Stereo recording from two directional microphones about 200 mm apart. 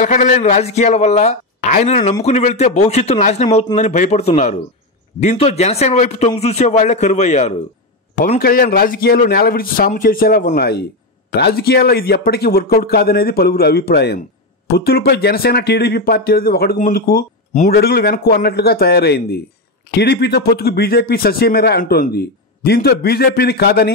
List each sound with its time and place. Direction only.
0.0 s a man's voice: 35° left (ahead or behind)
3.4 s speech: 20° left (ahead or behind)
3.7 s a man's voice: 35° left (ahead or behind); by 23.9 s 55° left (ahead or behind)